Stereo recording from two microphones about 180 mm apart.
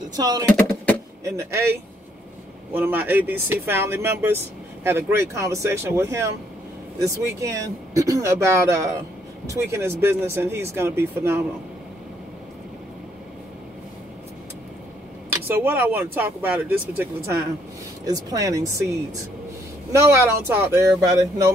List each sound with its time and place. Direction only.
0.1 s speech: 20° right (ahead or behind)
15.2 s speech: 10° right (ahead or behind)
19.9 s speech: 15° right (ahead or behind)